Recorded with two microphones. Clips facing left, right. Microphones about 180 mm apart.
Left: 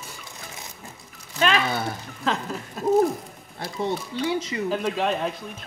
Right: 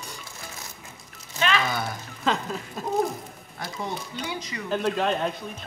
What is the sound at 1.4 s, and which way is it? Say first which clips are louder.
Speech: left 3 dB; 40° left (ahead or behind).